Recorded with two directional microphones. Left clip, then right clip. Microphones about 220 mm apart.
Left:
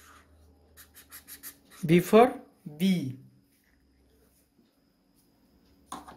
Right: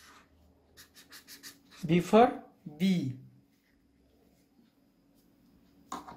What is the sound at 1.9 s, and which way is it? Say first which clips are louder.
Speech: left 3 dB; 30° left (ahead or behind).